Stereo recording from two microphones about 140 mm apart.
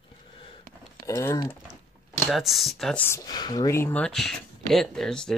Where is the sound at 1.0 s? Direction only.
20° left (ahead or behind).